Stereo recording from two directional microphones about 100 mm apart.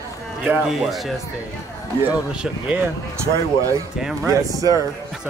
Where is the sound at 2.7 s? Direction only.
25° right (ahead or behind).